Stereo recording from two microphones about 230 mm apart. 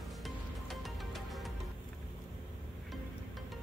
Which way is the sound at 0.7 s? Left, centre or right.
Centre.